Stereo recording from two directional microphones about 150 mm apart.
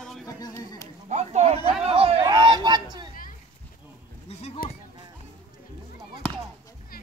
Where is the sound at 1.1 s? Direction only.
50° right (ahead or behind); by 2.8 s 30° right (ahead or behind).